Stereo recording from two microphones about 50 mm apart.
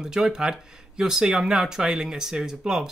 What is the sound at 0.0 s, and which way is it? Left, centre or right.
Speech, centre.